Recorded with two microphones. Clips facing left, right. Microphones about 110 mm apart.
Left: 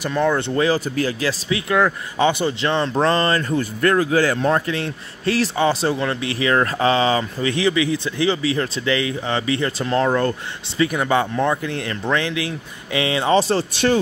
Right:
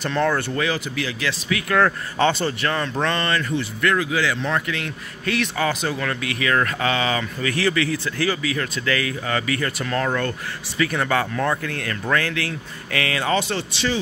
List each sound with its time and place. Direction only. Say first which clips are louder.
0.0 s speech: left 2 dB; 10° left (ahead or behind)
0.6 s speech: left 5 dB; 35° left (ahead or behind)
1.5 s speech: even; 20° left (ahead or behind)
10.9 s speech: left 1 dB; 15° left (ahead or behind); by 13.7 s 35° left (ahead or behind)